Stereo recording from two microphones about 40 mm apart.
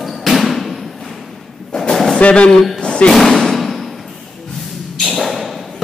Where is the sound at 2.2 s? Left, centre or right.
Left.